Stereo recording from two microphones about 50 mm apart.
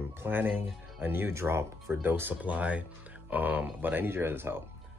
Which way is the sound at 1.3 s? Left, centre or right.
Right.